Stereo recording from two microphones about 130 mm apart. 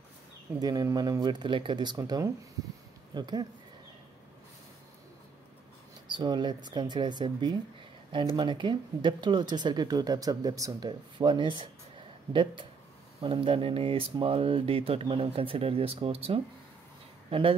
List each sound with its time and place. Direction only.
0.6 s speech: 30° right (ahead or behind)
6.0 s speech: 35° right (ahead or behind)